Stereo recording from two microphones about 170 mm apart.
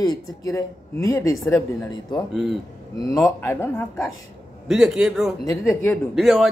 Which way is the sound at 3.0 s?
20° left (ahead or behind).